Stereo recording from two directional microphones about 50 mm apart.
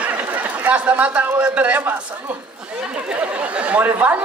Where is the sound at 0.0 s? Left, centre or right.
Right.